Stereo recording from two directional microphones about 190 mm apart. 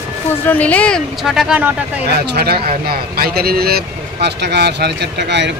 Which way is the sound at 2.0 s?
60° right (ahead or behind).